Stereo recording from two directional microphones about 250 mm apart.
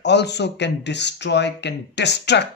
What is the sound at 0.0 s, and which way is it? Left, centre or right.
Speech, left.